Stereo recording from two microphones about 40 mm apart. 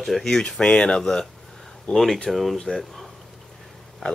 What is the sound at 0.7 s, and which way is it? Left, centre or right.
Speech, left.